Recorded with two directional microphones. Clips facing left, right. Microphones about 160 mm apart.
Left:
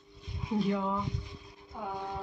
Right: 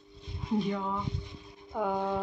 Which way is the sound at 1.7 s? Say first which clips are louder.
Right 8 dB; 90° right.